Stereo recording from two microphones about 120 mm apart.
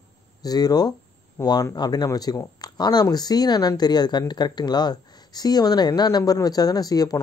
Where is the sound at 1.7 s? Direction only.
35° left (ahead or behind).